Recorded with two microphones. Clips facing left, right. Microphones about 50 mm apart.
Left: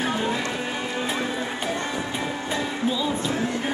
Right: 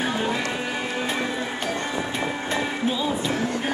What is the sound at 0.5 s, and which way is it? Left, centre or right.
Music, right.